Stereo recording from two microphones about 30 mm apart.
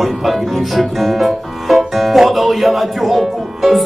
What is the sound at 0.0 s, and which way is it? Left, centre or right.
Speech, centre.